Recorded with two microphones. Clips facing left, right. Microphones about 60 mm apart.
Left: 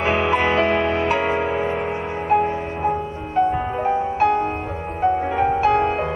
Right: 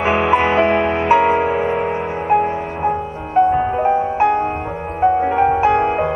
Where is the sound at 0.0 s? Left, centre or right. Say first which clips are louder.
Right 4 dB; centre.